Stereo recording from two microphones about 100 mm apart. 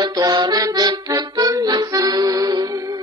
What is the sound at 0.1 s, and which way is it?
Music, 40° right (ahead or behind).